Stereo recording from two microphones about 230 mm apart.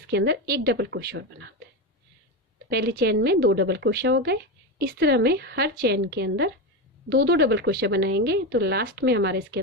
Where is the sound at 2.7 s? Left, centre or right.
Right.